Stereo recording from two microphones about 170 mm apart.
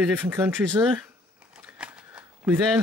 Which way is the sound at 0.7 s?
10° right (ahead or behind).